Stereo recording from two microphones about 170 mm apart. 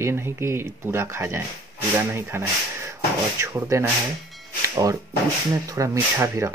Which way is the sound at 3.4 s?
15° right (ahead or behind).